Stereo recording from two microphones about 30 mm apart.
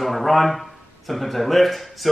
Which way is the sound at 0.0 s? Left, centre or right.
Centre.